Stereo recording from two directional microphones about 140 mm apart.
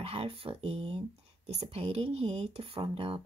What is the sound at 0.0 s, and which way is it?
Speech, 45° right (ahead or behind).